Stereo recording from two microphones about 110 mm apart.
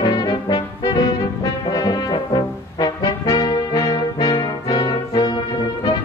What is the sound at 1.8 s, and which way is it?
Brass instrument, 50° left (ahead or behind).